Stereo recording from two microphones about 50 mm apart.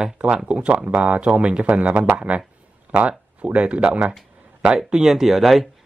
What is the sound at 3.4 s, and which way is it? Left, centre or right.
Speech, right.